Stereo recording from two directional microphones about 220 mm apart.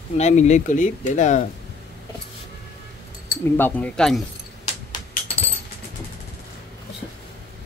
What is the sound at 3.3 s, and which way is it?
Speech, 10° left (ahead or behind).